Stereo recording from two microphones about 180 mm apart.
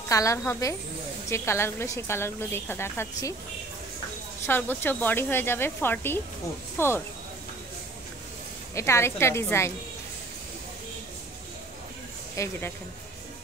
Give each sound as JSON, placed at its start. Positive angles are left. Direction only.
{"t": 0.1, "sound": "a woman's voice", "side_deg": 20}
{"t": 4.5, "sound": "a woman's voice", "side_deg": 10}
{"t": 8.7, "sound": "a woman's voice", "side_deg": 15}
{"t": 12.4, "sound": "a woman's voice", "side_deg": 10}